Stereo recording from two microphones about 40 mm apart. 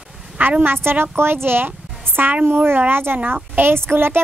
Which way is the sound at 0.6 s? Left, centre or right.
Right.